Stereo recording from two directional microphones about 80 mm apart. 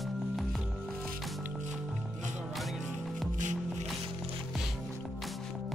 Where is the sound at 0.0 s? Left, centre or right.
Centre.